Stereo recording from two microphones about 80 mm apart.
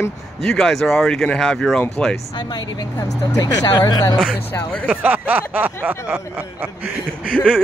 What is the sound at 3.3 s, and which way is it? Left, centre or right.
Speech, left.